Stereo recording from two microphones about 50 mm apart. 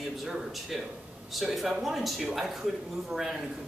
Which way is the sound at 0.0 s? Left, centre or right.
Centre.